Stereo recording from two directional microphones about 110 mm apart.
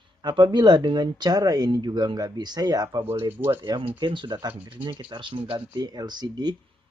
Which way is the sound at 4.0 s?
45° right (ahead or behind).